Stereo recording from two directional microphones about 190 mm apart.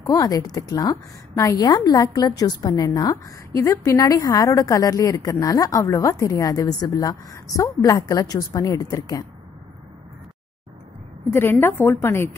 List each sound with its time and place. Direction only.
0.0 s a woman's voice: 20° left (ahead or behind)
11.6 s a woman's voice: 10° left (ahead or behind)